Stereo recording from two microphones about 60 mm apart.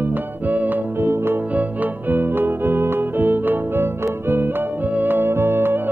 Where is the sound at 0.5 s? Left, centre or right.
Right.